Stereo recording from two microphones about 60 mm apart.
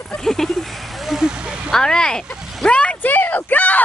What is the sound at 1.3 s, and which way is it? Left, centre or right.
Speech, centre.